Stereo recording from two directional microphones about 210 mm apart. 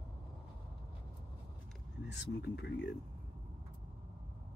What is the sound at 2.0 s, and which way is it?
Speech, 55° left (ahead or behind).